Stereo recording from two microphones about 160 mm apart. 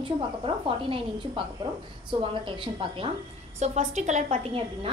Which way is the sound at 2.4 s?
30° right (ahead or behind).